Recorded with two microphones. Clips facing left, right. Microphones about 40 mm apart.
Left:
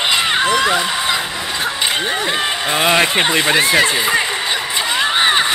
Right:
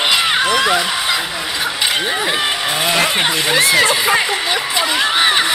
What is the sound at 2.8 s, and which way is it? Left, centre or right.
Speech, centre.